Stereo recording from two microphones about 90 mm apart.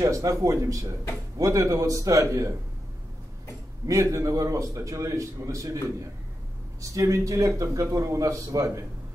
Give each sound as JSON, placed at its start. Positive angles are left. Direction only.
{"t": 0.0, "sound": "a man's voice", "side_deg": -40}
{"t": 3.8, "sound": "a man's voice", "side_deg": -35}